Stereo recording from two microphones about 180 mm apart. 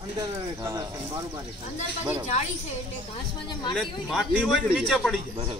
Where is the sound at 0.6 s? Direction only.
20° right (ahead or behind).